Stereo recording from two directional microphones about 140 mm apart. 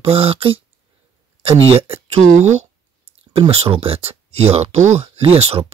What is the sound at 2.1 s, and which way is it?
Speech, 55° right (ahead or behind).